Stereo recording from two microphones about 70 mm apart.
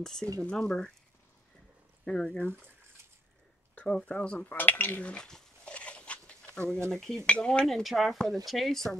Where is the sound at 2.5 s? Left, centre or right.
Right.